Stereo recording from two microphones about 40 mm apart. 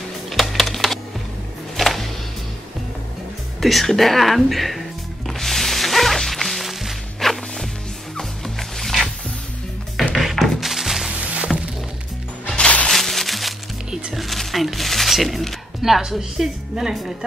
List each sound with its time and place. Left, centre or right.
0.3 s music: centre
3.6 s music: centre
10.0 s music: centre
11.1 s music: right
12.4 s music: left
12.9 s music: centre
14.1 s a sound: centre
16.0 s a woman's voice: centre